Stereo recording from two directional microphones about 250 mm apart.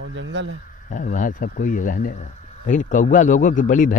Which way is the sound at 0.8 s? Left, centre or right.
Left.